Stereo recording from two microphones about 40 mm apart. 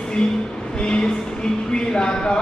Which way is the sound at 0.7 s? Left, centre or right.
Left.